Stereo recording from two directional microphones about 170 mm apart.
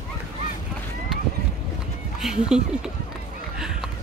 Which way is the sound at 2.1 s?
5° right (ahead or behind).